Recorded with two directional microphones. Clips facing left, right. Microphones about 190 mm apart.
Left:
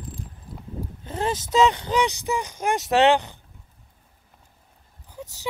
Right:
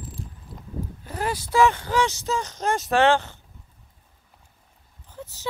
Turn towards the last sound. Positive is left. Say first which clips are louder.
# left 1 dB
turn(degrees=15)  # may be behind; listen again after turning